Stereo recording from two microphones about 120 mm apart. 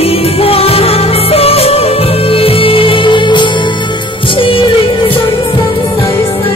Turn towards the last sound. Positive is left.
turn(degrees=50)  # may be behind; listen again after turning